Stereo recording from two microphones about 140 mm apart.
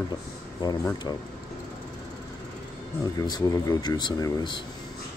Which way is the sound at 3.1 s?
30° left (ahead or behind).